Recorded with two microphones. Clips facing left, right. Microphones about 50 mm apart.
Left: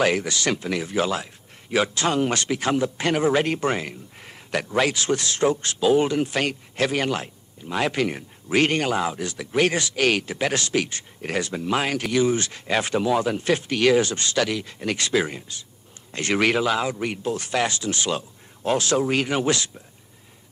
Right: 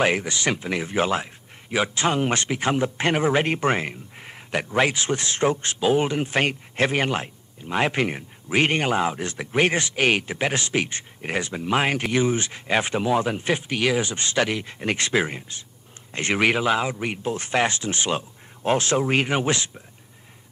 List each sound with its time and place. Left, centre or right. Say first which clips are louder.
0.0 s speech: even; right
1.7 s speech: left 1 dB; centre
14.1 s speech: even; right